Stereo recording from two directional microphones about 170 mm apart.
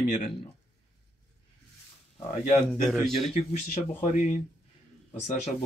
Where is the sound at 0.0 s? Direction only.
55° left (ahead or behind).